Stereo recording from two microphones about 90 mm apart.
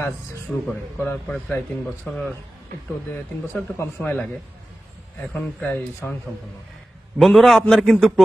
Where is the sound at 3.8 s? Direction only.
20° left (ahead or behind).